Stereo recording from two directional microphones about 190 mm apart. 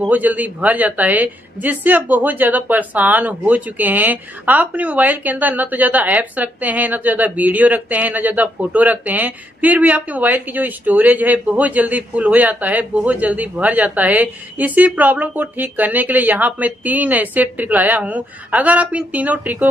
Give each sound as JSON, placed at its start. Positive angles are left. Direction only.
{"t": 0.0, "sound": "a woman's voice", "side_deg": -10}